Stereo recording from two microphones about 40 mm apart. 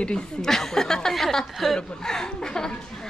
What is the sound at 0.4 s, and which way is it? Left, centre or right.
A woman's voice, centre.